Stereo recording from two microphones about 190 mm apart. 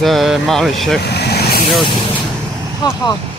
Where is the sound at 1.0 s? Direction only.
60° left (ahead or behind).